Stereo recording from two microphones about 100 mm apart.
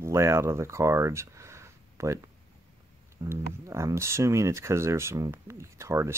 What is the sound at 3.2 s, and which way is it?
Speech, 30° right (ahead or behind).